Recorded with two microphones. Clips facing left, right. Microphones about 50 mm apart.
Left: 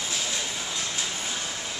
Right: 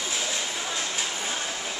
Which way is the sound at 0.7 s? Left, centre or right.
Right.